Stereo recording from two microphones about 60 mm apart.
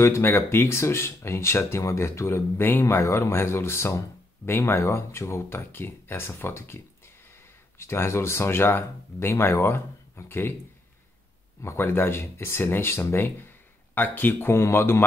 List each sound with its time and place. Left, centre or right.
0.0 s speech: left
7.8 s speech: left
11.6 s speech: left